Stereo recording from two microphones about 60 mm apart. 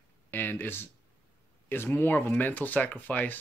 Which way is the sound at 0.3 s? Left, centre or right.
Left.